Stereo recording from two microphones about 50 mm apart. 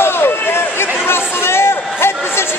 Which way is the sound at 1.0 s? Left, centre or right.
Left.